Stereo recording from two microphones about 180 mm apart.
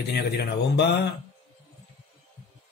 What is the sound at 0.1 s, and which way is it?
Speech, 65° left (ahead or behind).